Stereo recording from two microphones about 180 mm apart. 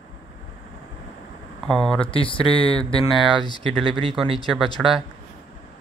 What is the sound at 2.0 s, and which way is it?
Speech, 30° left (ahead or behind).